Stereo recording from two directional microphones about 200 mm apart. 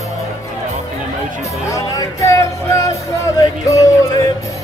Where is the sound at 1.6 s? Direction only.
15° left (ahead or behind).